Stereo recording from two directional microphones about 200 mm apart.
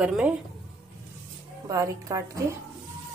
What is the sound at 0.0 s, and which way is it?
Speech, 5° right (ahead or behind).